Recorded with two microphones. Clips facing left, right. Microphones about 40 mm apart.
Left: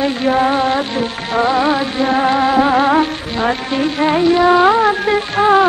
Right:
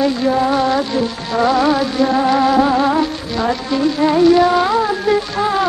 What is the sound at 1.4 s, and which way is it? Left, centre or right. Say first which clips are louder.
Music: right 1 dB; left.